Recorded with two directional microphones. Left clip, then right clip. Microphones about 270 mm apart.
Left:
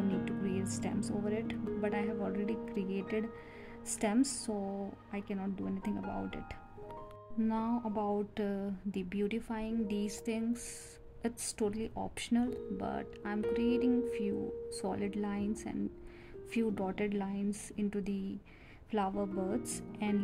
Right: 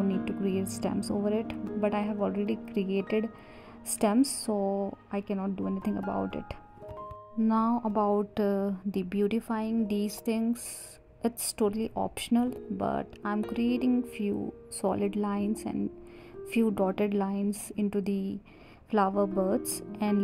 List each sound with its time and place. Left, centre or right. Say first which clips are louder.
0.2 s speech: right 6 dB; centre
2.4 s speech: right 4 dB; centre
2.7 s speech: right 7 dB; centre
3.0 s speech: right 8 dB; centre
4.0 s speech: right 7 dB; centre
7.4 s speech: right 8 dB; right